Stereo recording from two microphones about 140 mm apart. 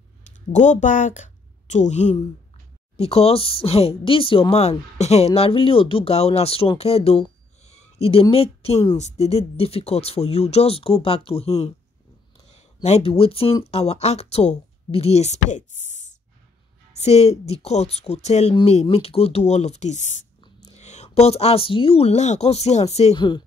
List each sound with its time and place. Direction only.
0.5 s a woman's voice: 60° left (ahead or behind)
3.0 s speech: 45° left (ahead or behind); by 16.2 s 60° left (ahead or behind)
17.0 s speech: 50° left (ahead or behind)
20.3 s whispering: 35° left (ahead or behind)
20.7 s speech: 55° left (ahead or behind)
23.1 s speech: 35° left (ahead or behind)